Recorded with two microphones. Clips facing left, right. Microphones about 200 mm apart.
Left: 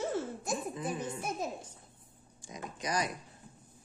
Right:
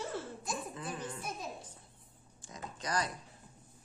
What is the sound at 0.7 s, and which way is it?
Giggle, 15° left (ahead or behind).